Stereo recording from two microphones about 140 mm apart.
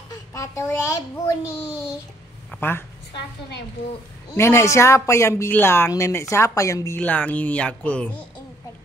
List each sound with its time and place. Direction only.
0.1 s a child's voice: 20° left (ahead or behind)
2.6 s speech: 15° left (ahead or behind)
4.4 s a woman's voice: 20° left (ahead or behind)
7.0 s speech: 10° left (ahead or behind)